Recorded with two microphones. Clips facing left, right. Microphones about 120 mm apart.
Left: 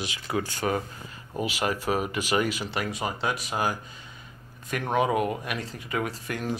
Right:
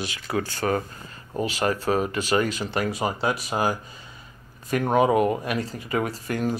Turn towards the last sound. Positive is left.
turn(degrees=0)  # may be behind; listen again after turning